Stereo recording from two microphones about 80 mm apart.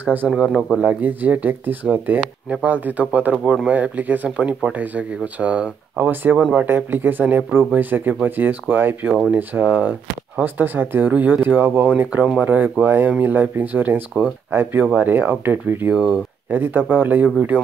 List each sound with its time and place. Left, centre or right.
0.0 s speech: right
0.4 s speech: centre
0.7 s speech: centre
15.9 s speech: centre
16.4 s speech: right